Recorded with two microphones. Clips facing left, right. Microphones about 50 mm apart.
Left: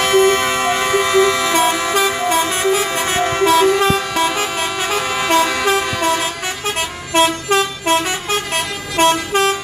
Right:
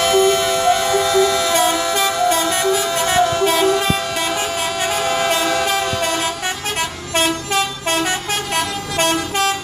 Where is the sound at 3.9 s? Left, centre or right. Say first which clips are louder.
Left 3 dB; left.